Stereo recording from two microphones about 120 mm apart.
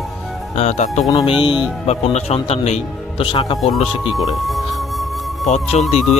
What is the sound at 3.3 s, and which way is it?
Speech, 35° left (ahead or behind).